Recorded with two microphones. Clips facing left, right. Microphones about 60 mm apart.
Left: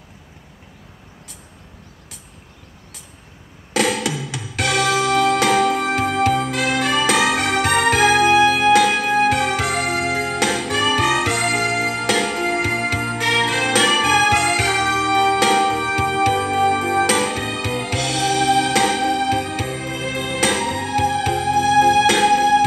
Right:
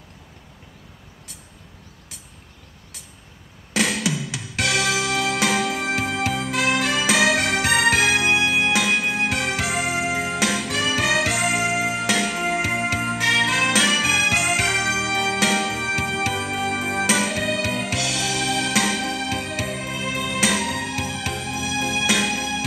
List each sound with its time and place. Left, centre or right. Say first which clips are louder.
3.7 s music: left 3 dB; centre